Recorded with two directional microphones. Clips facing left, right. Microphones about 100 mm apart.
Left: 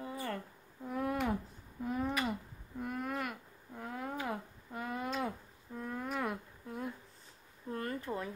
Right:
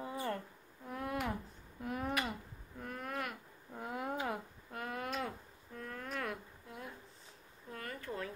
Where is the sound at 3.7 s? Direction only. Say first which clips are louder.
Right 1 dB; 10° right (ahead or behind).